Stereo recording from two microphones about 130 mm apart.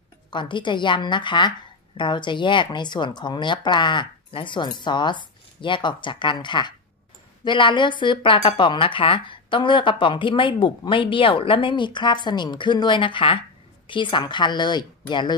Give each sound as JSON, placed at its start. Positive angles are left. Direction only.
{"t": 0.3, "sound": "speech", "side_deg": 35}